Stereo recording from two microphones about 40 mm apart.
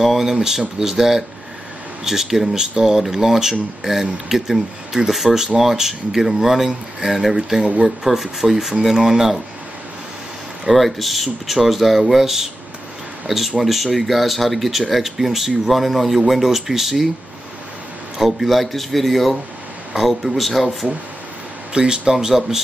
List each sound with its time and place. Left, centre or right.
0.0 s speech: centre
10.7 s speech: centre
13.6 s speech: centre
18.2 s speech: centre
21.7 s speech: right